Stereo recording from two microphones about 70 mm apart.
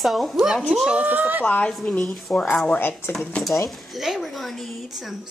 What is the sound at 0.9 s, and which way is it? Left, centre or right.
Speech, right.